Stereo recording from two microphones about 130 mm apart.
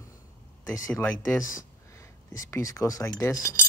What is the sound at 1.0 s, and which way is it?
Speech, 15° left (ahead or behind).